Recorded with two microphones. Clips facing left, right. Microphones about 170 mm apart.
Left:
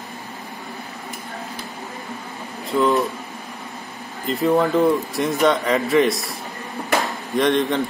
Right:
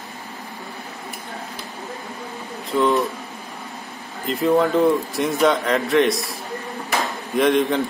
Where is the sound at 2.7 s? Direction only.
Centre (ahead or behind).